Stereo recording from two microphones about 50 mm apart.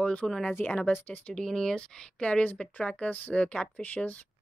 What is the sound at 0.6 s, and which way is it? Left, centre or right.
Speech, left.